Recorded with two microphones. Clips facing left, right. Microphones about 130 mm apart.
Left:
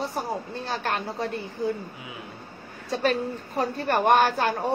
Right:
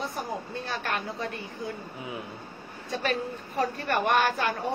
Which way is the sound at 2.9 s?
35° left (ahead or behind).